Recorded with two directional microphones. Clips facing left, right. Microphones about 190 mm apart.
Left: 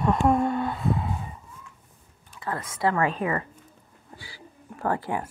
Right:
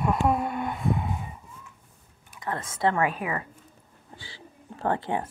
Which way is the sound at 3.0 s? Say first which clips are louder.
Left 2 dB; 10° right (ahead or behind).